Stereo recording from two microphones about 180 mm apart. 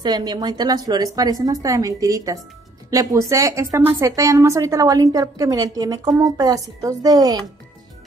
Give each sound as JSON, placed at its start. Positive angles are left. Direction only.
{"t": 0.0, "sound": "a woman's voice", "side_deg": -25}